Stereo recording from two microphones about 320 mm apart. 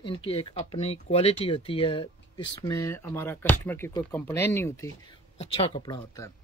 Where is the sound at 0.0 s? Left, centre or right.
Centre.